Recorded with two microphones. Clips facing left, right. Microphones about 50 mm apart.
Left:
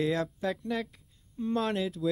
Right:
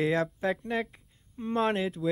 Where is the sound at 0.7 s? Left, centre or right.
Right.